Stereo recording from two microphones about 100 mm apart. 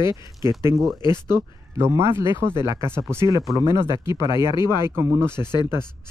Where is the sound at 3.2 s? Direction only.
40° right (ahead or behind).